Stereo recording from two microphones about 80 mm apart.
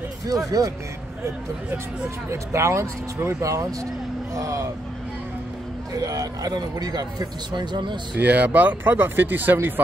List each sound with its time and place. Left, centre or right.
0.3 s speech: right
2.2 s speech: right
5.9 s speech: right
8.2 s speech: right